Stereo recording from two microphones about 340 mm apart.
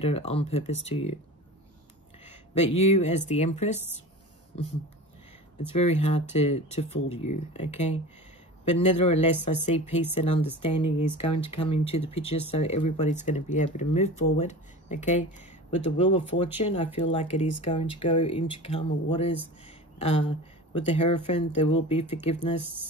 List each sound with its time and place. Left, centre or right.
0.0 s speech: centre
2.2 s speech: centre
5.8 s speech: centre
19.6 s a sound: centre
20.9 s speech: centre